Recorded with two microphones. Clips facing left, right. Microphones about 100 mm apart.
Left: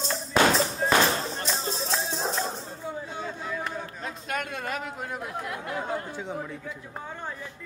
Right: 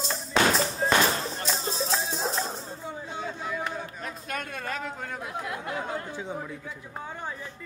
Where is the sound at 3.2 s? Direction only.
10° right (ahead or behind).